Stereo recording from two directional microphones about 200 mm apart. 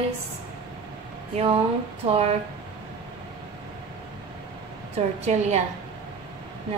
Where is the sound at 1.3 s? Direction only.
30° right (ahead or behind).